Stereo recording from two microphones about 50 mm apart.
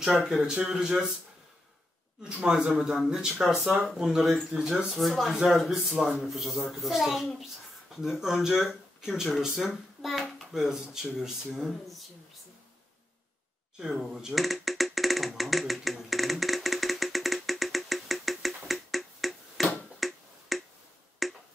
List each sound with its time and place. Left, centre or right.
0.0 s speech: centre
2.2 s speech: centre
2.7 s speech: centre
4.9 s a child's voice: centre
13.7 s music: centre
21.2 s finger snapping: centre